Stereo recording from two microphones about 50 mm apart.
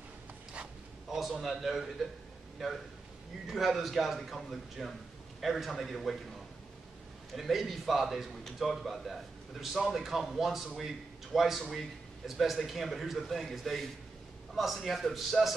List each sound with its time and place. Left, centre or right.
1.0 s a man's voice: centre
3.4 s a man's voice: centre
7.3 s a man's voice: centre